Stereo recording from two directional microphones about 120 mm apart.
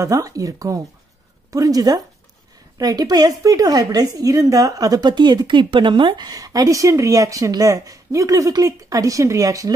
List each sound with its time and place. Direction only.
0.0 s a woman's voice: 30° right (ahead or behind)